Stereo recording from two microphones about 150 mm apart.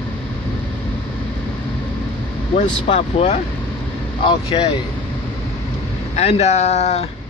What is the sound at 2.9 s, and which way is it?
Speech, 50° left (ahead or behind).